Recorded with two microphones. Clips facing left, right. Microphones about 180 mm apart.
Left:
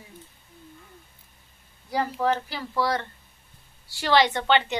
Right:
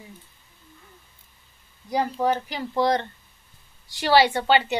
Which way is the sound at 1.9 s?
15° right (ahead or behind).